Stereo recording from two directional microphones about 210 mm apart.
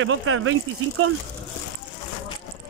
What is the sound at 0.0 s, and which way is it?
Speech, 75° right (ahead or behind).